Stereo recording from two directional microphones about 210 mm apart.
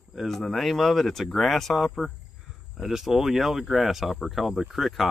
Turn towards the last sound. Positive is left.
turn(degrees=0)  # may be behind; listen again after turning